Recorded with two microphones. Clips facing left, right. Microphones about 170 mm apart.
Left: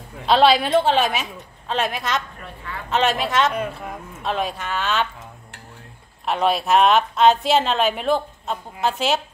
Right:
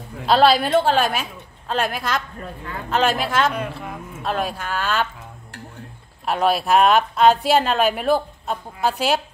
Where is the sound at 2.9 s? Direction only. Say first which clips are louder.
Even; 5° right (ahead or behind).